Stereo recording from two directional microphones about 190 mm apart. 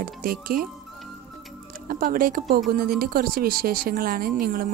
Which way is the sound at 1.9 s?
50° right (ahead or behind).